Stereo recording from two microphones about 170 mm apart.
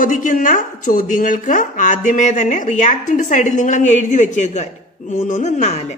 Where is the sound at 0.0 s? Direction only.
50° left (ahead or behind).